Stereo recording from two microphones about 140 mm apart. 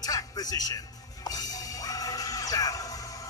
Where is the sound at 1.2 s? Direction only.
25° left (ahead or behind).